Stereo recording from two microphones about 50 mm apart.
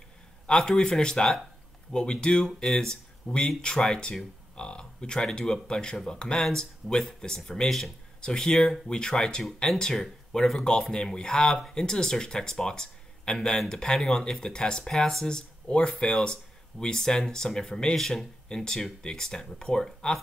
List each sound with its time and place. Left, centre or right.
0.5 s speech: centre